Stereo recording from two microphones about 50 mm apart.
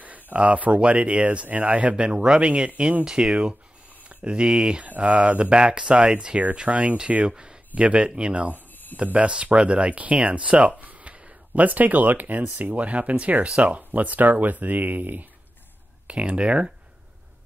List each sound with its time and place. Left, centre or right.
0.0 s speech: right
2.1 s speech: centre
2.4 s speech: right
3.1 s speech: centre
4.8 s speech: right
16.1 s speech: right